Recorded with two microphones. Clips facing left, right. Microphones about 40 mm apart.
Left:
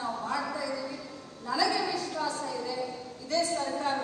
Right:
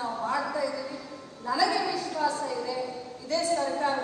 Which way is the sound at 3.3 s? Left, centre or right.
Right.